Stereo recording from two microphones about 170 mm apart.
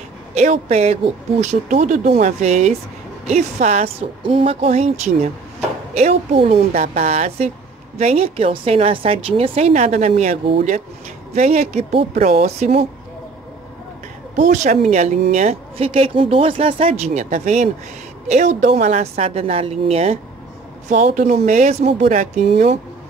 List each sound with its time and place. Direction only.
0.3 s speech: 40° right (ahead or behind)
14.8 s speech: 40° right (ahead or behind)
20.9 s speech: 50° right (ahead or behind)